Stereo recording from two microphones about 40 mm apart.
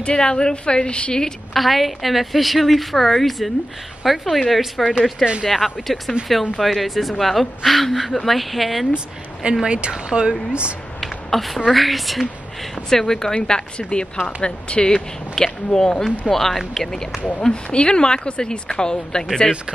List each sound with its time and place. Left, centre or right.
0.0 s speech: left
1.5 s speech: centre
8.9 s speech: right
11.0 s a sound: centre
11.7 s speech: centre
12.9 s speech: centre
17.4 s speech: left